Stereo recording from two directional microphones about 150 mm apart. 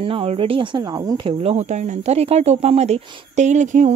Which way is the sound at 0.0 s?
40° right (ahead or behind).